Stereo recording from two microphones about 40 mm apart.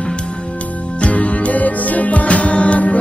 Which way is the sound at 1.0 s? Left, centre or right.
Left.